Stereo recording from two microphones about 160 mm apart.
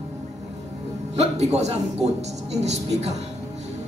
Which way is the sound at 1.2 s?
45° right (ahead or behind).